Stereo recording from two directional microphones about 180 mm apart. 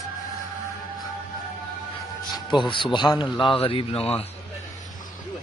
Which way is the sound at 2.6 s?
25° left (ahead or behind).